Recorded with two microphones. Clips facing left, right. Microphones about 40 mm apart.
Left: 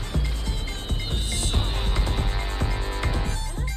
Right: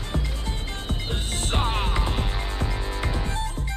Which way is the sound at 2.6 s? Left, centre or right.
Centre.